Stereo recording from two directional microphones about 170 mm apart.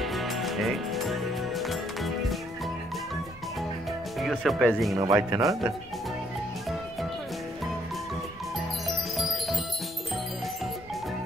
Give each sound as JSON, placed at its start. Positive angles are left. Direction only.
{"t": 0.0, "sound": "music", "side_deg": 0}
{"t": 4.2, "sound": "speech", "side_deg": 0}
{"t": 4.9, "sound": "speech", "side_deg": -20}
{"t": 9.1, "sound": "music", "side_deg": 0}